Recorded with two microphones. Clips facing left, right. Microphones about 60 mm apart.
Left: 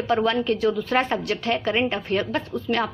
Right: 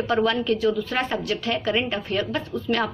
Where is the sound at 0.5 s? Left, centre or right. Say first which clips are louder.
Left 1 dB; left.